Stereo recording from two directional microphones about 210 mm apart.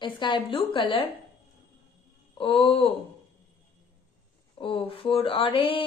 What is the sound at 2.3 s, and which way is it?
Speech, 25° left (ahead or behind).